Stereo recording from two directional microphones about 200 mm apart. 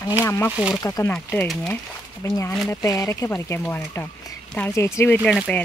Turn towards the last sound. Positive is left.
turn(degrees=10)  # may be behind; listen again after turning